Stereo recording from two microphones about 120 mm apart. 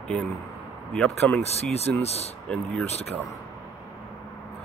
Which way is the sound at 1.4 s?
60° left (ahead or behind).